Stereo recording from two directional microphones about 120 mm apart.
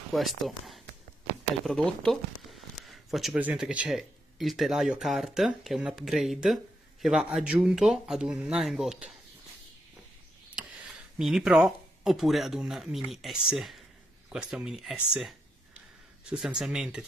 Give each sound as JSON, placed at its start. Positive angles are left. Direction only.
{"t": 0.1, "sound": "speech", "side_deg": 0}
{"t": 2.8, "sound": "a sound", "side_deg": 0}
{"t": 3.3, "sound": "speech", "side_deg": -10}
{"t": 10.5, "sound": "a sound", "side_deg": -5}
{"t": 12.0, "sound": "speech", "side_deg": 0}
{"t": 16.3, "sound": "speech", "side_deg": -5}